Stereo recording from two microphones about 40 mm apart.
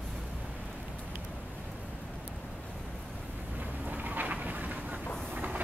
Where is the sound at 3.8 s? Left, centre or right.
Right.